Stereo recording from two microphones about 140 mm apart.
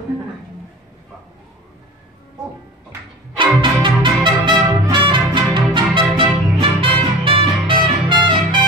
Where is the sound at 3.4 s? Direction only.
35° right (ahead or behind).